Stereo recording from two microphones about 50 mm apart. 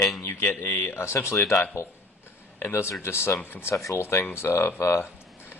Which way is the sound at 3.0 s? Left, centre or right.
Left.